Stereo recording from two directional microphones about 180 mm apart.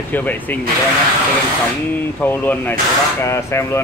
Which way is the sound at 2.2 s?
10° left (ahead or behind).